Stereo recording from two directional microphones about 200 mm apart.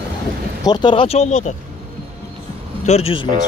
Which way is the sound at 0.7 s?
25° left (ahead or behind).